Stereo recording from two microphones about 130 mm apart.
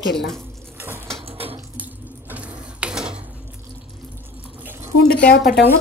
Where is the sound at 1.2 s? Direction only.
45° right (ahead or behind).